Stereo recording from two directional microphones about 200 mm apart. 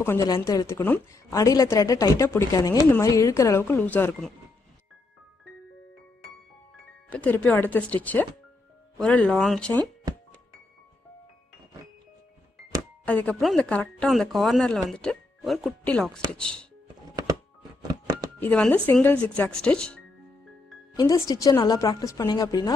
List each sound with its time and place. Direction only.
0.0 s speech: 15° left (ahead or behind)
7.1 s speech: 5° left (ahead or behind)
13.0 s speech: 5° left (ahead or behind)
17.8 s music: 20° right (ahead or behind)
18.4 s speech: 5° left (ahead or behind)
20.9 s speech: 15° left (ahead or behind)